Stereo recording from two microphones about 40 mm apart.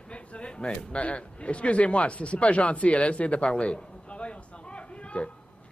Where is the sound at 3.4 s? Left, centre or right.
Left.